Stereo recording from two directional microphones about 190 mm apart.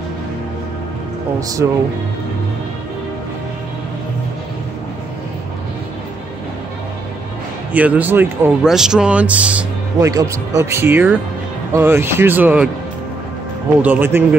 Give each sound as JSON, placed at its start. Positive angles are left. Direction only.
{"t": 1.6, "sound": "speech", "side_deg": -10}
{"t": 7.7, "sound": "speech", "side_deg": -10}
{"t": 13.8, "sound": "speech", "side_deg": -10}